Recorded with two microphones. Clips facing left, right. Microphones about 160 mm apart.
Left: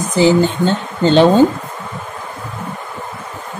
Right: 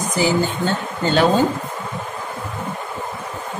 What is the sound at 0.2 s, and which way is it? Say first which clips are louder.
Speech: left 7 dB; 20° left (ahead or behind).